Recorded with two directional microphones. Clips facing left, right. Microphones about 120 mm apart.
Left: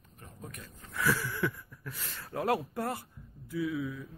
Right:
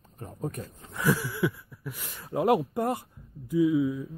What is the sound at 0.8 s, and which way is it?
Speech, 20° right (ahead or behind).